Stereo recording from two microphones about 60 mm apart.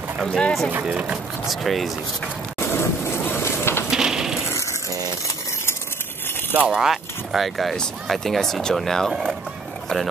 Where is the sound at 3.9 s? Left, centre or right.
Centre.